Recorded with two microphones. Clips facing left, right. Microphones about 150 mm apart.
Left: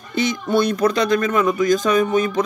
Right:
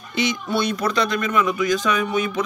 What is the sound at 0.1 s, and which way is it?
Speech, 50° left (ahead or behind).